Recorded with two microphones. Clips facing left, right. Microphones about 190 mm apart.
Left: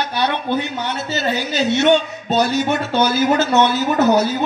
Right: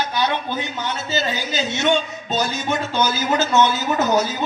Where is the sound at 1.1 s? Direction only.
65° left (ahead or behind).